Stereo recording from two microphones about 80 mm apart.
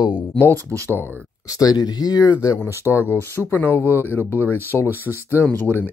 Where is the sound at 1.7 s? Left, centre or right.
Left.